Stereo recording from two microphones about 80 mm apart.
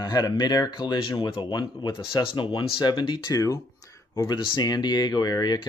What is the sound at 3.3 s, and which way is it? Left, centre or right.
Speech, left.